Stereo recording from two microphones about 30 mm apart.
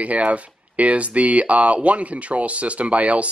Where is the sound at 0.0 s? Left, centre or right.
Right.